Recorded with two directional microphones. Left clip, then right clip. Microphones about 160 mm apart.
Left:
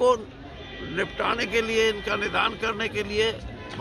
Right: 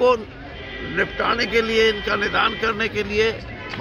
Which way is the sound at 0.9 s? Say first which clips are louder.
Right 5 dB; 15° left (ahead or behind).